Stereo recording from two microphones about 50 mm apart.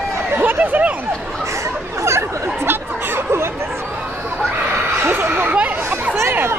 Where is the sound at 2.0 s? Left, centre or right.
Right.